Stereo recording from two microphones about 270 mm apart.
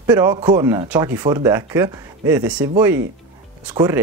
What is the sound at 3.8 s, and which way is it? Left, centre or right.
Speech, centre.